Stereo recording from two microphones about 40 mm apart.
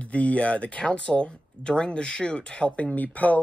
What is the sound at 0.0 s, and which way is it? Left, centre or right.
Speech, left.